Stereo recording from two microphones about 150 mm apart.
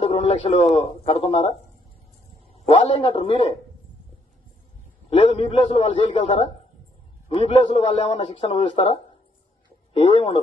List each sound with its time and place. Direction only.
0.0 s speech: 40° left (ahead or behind)
2.5 s a man's voice: 45° left (ahead or behind)
3.1 s a man's voice: 40° left (ahead or behind)
5.1 s a man's voice: 35° left (ahead or behind)